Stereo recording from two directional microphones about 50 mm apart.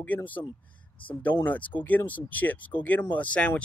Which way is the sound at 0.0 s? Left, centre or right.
Left.